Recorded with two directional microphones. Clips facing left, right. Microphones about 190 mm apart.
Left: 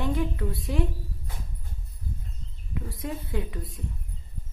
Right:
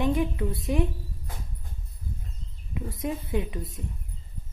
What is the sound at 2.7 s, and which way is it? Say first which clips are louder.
A woman's voice: right 3 dB; 20° right (ahead or behind).